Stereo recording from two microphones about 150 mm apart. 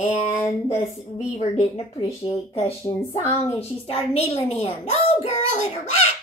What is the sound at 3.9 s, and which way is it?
A child's voice, 40° left (ahead or behind).